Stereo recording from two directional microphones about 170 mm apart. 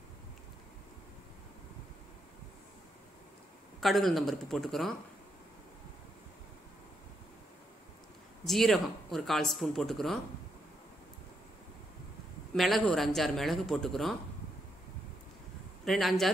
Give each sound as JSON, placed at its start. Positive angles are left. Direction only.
{"t": 3.8, "sound": "speech", "side_deg": 0}
{"t": 8.5, "sound": "speech", "side_deg": 0}
{"t": 12.5, "sound": "speech", "side_deg": 0}
{"t": 15.8, "sound": "speech", "side_deg": 0}